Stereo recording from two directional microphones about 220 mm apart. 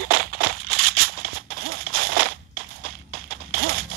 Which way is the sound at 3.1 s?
45° right (ahead or behind).